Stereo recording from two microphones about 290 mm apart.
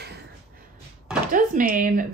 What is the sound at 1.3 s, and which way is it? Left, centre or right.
Speech, right.